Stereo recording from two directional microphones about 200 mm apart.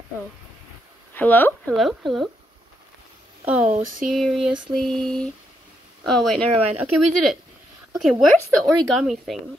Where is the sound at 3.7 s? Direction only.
45° right (ahead or behind).